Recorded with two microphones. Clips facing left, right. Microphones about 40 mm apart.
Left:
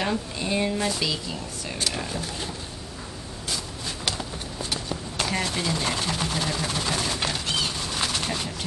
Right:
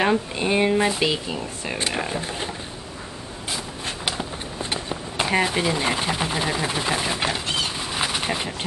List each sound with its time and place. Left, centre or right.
0.0 s speech: right
4.0 s run: right